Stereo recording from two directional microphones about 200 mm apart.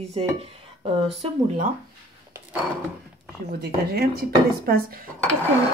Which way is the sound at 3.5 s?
50° right (ahead or behind).